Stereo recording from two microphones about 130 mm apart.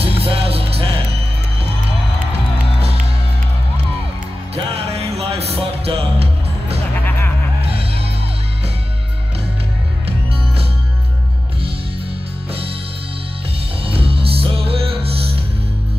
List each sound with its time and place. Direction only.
0.0 s music: 50° right (ahead or behind)
4.7 s music: 50° right (ahead or behind)
7.1 s music: 15° left (ahead or behind)
13.8 s music: 45° right (ahead or behind)